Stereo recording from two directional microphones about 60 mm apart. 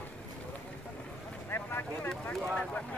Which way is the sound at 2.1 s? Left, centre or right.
Centre.